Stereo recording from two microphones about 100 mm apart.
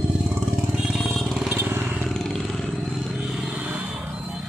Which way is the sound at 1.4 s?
20° right (ahead or behind).